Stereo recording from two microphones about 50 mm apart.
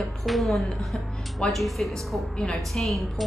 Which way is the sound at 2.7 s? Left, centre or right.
Centre.